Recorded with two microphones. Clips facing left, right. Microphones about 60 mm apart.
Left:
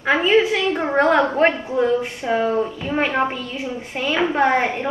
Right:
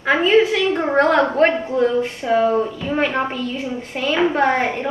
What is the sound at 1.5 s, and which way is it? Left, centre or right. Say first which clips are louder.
Speech: right 4 dB; right.